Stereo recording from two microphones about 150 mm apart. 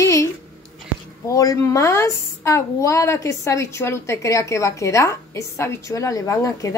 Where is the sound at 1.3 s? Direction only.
25° left (ahead or behind).